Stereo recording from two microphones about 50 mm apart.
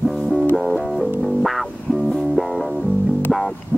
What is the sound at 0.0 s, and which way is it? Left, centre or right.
Music, centre.